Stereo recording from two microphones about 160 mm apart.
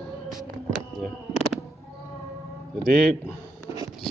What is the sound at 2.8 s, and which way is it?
Speech, 75° right (ahead or behind).